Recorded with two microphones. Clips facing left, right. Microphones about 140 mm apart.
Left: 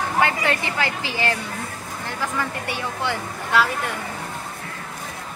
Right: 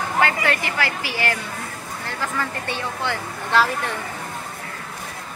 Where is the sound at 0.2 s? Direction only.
20° left (ahead or behind).